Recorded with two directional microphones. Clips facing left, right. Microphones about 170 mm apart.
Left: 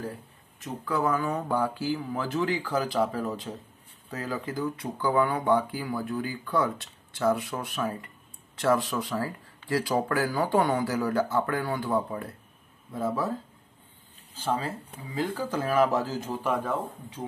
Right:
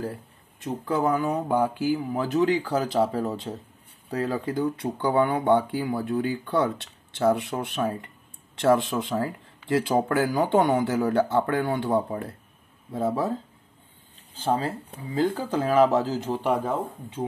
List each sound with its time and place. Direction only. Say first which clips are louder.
0.8 s speech: right 3 dB; 20° right (ahead or behind)
15.2 s speech: right 4 dB; 20° right (ahead or behind)